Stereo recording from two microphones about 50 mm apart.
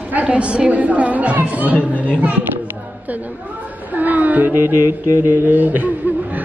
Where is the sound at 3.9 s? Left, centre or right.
Right.